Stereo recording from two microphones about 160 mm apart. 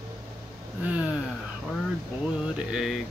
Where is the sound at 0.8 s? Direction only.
10° right (ahead or behind).